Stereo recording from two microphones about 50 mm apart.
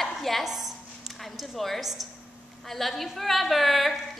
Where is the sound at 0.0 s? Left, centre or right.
Centre.